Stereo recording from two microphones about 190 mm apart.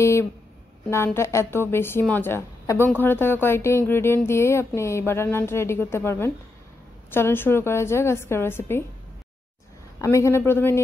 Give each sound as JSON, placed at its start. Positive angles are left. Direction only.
{"t": 0.0, "sound": "a woman's voice", "side_deg": 15}
{"t": 9.9, "sound": "a woman's voice", "side_deg": 15}